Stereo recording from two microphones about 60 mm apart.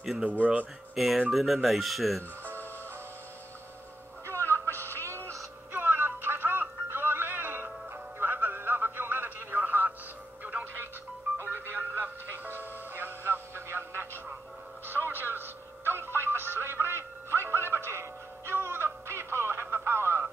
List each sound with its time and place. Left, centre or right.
0.2 s speech: right
0.9 s speech: centre
4.4 s music: left
5.7 s music: right
11.4 s music: right
15.0 s a sound: right
16.1 s music: right